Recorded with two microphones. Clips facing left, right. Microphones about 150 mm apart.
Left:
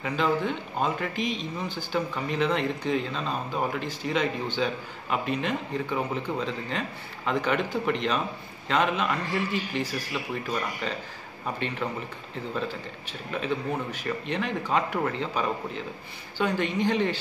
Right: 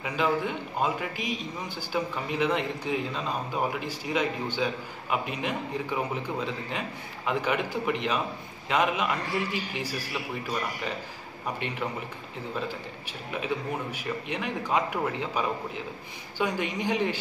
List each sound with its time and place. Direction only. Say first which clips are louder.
0.0 s a man's voice: left 1 dB; 10° right (ahead or behind)
11.6 s a man's voice: left 5 dB; 10° right (ahead or behind)
13.9 s a man's voice: left 2 dB; 10° right (ahead or behind)